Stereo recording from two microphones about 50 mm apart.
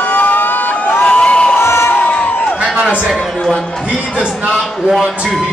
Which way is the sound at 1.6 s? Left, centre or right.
Left.